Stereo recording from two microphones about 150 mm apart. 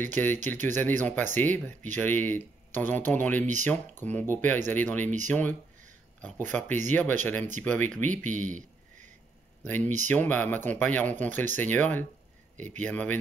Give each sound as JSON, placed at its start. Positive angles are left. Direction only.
{"t": 0.0, "sound": "speech", "side_deg": 10}
{"t": 8.2, "sound": "a sound", "side_deg": -55}
{"t": 9.7, "sound": "speech", "side_deg": 10}